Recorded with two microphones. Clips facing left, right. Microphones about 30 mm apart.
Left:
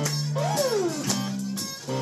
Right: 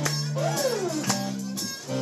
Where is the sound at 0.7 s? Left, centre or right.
Centre.